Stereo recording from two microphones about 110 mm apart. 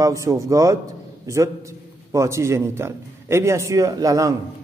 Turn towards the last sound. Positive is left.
turn(degrees=-30)  # may be behind; listen again after turning